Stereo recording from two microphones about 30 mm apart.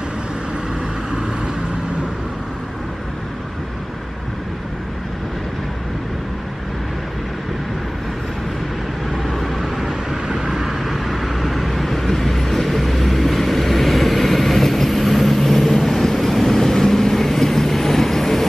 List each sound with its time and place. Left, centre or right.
9.3 s vehicle: centre
9.8 s vehicle: centre